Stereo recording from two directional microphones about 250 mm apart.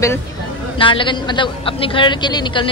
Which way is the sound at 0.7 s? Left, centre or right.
Centre.